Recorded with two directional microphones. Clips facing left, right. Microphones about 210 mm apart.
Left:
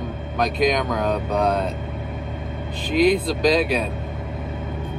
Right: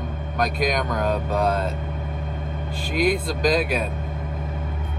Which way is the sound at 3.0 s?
5° right (ahead or behind).